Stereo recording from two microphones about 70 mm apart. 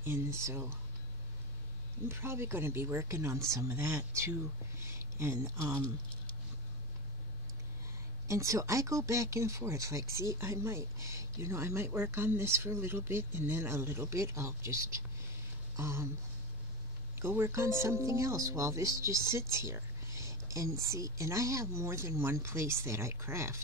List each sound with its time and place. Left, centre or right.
0.0 s speech: right
2.0 s speech: right
3.7 s speech: right
8.3 s speech: right
17.1 s speech: right